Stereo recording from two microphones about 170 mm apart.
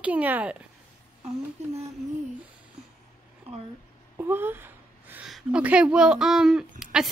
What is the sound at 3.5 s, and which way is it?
Speech, 35° right (ahead or behind).